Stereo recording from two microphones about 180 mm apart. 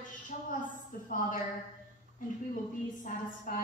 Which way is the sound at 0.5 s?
50° left (ahead or behind).